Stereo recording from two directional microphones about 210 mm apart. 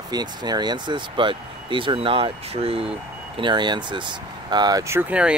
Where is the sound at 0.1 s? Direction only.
20° right (ahead or behind).